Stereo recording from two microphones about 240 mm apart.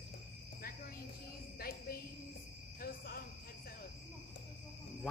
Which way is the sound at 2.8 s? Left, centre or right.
Left.